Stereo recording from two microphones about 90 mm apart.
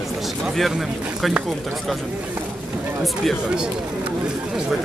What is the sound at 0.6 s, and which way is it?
Speech, centre (ahead or behind).